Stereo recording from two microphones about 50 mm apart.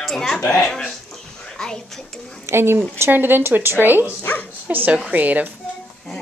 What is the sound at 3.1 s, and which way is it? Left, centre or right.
A woman's voice, right.